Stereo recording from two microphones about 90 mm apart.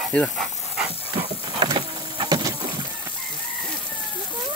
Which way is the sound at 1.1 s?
90° right.